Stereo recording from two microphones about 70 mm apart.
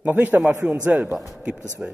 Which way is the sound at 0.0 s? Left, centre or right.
Right.